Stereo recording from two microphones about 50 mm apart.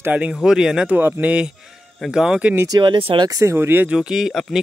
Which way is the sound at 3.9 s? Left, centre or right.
Centre.